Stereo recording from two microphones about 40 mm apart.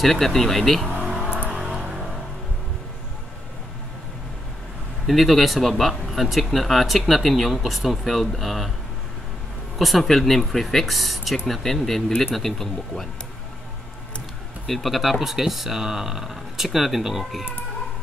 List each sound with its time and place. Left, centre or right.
0.0 s speech: centre
1.5 s vehicle: right
5.0 s speech: centre
9.8 s speech: centre
14.7 s speech: centre